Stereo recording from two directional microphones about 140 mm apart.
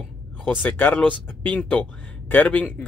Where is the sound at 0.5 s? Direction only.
10° left (ahead or behind).